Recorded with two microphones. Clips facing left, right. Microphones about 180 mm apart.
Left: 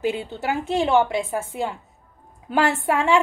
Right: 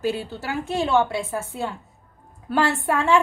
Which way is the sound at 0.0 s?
20° left (ahead or behind).